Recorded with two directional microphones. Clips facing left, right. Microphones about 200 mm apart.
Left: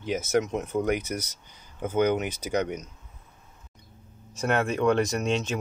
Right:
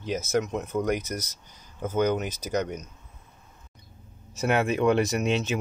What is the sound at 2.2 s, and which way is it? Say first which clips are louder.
Speech: left 1 dB; 60° left (ahead or behind).